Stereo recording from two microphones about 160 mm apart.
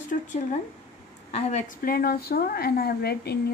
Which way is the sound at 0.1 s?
50° left (ahead or behind).